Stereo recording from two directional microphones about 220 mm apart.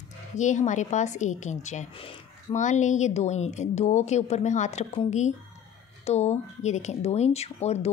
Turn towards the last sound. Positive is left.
turn(degrees=30)  # may be behind; listen again after turning